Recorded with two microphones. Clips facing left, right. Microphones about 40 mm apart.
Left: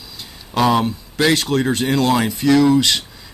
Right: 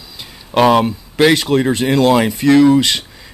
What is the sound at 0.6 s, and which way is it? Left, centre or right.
Speech, right.